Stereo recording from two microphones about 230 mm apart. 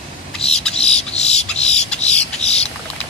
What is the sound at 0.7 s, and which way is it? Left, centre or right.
Bird, left.